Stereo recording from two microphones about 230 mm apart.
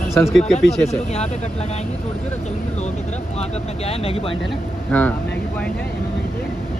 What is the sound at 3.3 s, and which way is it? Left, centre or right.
Speech, left.